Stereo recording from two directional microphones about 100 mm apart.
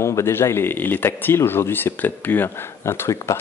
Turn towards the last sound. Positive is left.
turn(degrees=30)  # may be behind; listen again after turning